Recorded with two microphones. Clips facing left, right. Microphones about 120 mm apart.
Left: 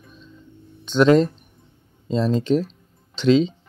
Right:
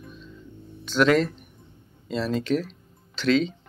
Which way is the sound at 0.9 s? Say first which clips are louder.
Left 5 dB; 35° left (ahead or behind).